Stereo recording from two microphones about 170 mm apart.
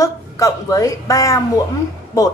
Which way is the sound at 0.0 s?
20° left (ahead or behind).